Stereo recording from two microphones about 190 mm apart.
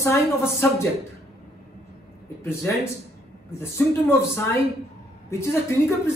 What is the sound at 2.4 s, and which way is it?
A man's voice, 15° left (ahead or behind).